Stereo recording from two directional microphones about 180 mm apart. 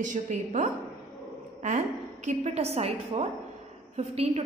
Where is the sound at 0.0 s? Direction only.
45° right (ahead or behind).